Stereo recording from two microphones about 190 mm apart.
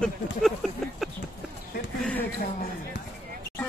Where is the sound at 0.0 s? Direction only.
Centre (ahead or behind).